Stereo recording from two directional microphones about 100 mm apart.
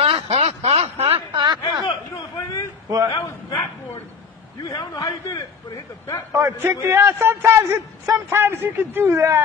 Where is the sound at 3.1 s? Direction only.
35° left (ahead or behind).